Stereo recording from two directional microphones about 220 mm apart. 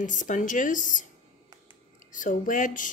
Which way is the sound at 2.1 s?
35° left (ahead or behind).